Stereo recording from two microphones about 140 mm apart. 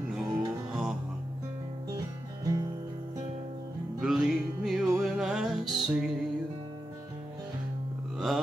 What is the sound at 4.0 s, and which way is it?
Music, 5° right (ahead or behind).